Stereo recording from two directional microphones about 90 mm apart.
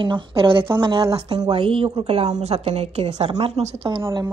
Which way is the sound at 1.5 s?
75° right (ahead or behind).